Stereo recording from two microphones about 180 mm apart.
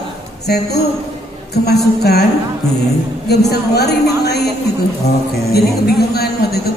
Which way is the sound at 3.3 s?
65° left (ahead or behind).